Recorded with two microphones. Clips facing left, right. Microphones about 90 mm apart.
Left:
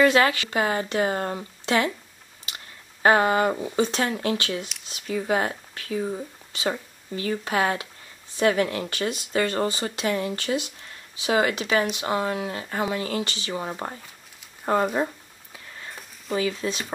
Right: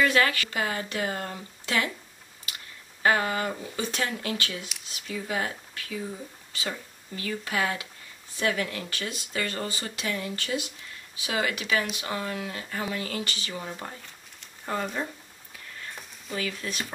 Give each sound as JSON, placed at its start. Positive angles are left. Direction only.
{"t": 0.0, "sound": "speech", "side_deg": 25}
{"t": 3.0, "sound": "speech", "side_deg": 30}
{"t": 5.0, "sound": "speech", "side_deg": 40}
{"t": 16.3, "sound": "speech", "side_deg": 25}